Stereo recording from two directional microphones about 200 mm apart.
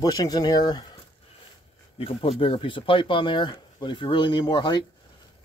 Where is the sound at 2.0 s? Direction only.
30° left (ahead or behind).